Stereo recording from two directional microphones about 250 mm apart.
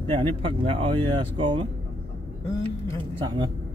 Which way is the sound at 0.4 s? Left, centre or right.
Right.